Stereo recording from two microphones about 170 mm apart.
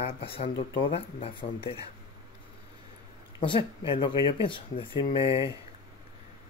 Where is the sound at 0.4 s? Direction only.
35° left (ahead or behind).